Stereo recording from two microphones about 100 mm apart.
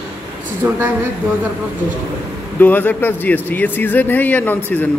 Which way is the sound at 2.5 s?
15° left (ahead or behind).